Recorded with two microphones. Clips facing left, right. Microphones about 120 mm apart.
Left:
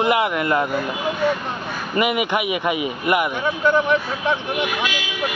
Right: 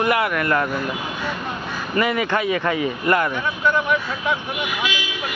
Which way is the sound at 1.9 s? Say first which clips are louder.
Even; 15° left (ahead or behind).